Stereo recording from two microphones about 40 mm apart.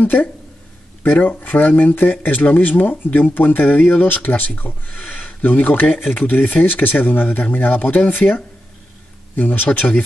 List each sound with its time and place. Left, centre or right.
0.0 s speech: left